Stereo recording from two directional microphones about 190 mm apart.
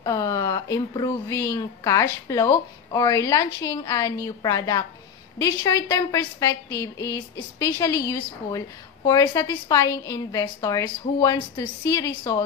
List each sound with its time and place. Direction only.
0.0 s a woman's voice: 20° left (ahead or behind)